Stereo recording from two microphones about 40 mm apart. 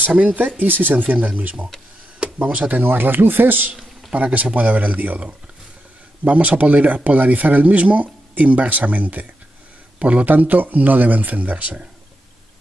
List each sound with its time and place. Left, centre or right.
0.1 s speech: right
2.8 s speech: right
4.1 s a man's voice: right
10.3 s speech: right